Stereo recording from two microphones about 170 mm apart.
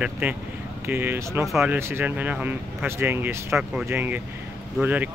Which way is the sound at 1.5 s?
Centre (ahead or behind).